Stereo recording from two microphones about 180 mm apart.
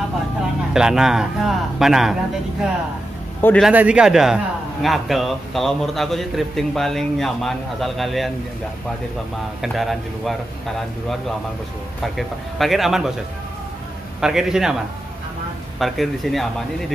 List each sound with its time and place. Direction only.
0.7 s a man's voice: 5° right (ahead or behind)
3.3 s a man's voice: 10° left (ahead or behind)
3.6 s a man's voice: 5° right (ahead or behind)
9.6 s a man's voice: centre (ahead or behind)
12.0 s a man's voice: centre (ahead or behind)
14.2 s a man's voice: 5° right (ahead or behind)
15.8 s a man's voice: centre (ahead or behind)